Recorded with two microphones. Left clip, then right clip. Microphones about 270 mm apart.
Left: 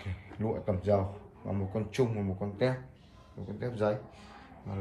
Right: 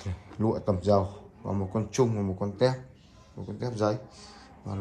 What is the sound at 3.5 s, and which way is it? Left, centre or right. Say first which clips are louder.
Speech: right 3 dB; centre.